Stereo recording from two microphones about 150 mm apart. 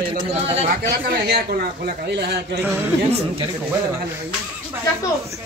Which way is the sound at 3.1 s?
45° right (ahead or behind).